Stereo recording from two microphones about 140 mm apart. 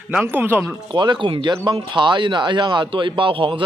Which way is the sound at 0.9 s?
35° right (ahead or behind).